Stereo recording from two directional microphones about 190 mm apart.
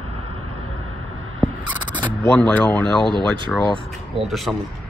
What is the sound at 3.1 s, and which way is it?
Speech, 25° right (ahead or behind).